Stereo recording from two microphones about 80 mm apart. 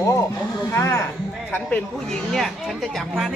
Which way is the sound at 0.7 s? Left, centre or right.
Left.